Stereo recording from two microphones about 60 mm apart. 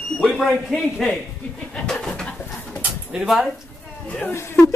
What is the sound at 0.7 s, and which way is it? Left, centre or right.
Speech, centre.